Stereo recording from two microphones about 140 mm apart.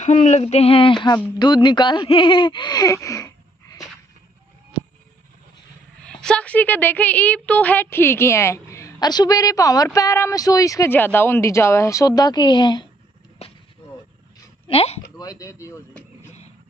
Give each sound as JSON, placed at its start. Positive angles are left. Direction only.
{"t": 0.0, "sound": "speech", "side_deg": 55}
{"t": 6.0, "sound": "speech", "side_deg": 10}
{"t": 13.4, "sound": "a sound", "side_deg": 45}
{"t": 14.7, "sound": "speech", "side_deg": 45}
{"t": 15.1, "sound": "speech", "side_deg": 25}